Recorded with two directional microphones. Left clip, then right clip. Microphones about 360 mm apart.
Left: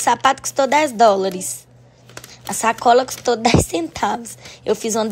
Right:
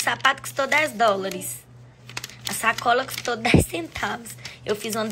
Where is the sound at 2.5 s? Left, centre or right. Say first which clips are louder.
Left 7 dB; centre.